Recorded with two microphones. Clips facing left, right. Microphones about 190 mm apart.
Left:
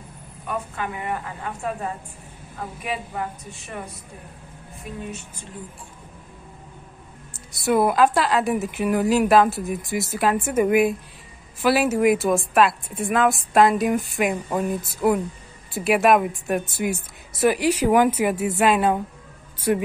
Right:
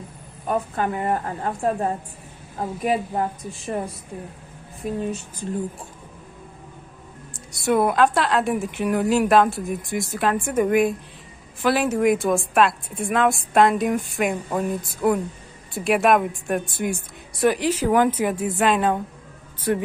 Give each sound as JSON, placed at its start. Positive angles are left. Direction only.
{"t": 0.5, "sound": "a woman's voice", "side_deg": -40}
{"t": 3.7, "sound": "a woman's voice", "side_deg": -35}
{"t": 4.8, "sound": "a woman's voice", "side_deg": -40}
{"t": 7.5, "sound": "a woman's voice", "side_deg": 0}